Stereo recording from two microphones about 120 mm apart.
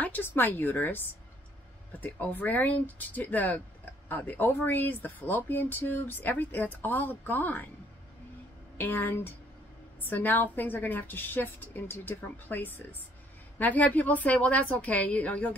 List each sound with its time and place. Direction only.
0.0 s speech: 15° left (ahead or behind)
8.7 s speech: 15° left (ahead or behind)